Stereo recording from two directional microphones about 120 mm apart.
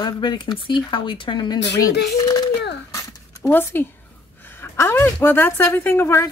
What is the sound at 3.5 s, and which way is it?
Speech, 15° left (ahead or behind).